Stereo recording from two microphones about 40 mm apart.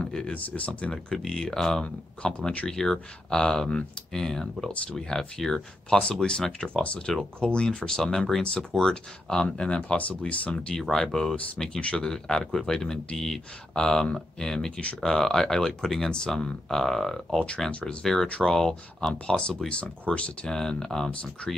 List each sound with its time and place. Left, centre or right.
0.3 s speech: left
0.9 s speech: centre
9.9 s speech: left
10.7 s speech: centre
11.8 s speech: left
12.1 s speech: centre
20.1 s speech: centre